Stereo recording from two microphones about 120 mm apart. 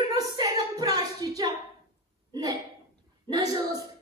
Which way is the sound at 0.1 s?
35° right (ahead or behind).